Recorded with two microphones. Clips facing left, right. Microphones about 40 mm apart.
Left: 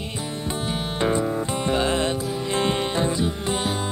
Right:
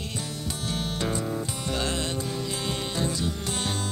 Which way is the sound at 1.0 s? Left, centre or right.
Left.